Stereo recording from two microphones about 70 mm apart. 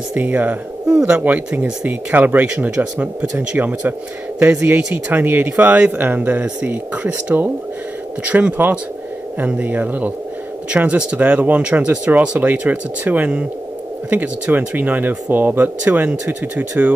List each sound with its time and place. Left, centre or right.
0.1 s speech: right
0.8 s speech: centre